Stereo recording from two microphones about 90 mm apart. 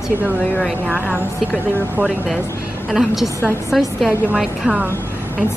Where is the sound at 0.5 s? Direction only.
5° left (ahead or behind).